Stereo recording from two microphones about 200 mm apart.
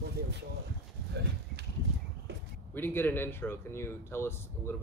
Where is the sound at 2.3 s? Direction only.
55° right (ahead or behind).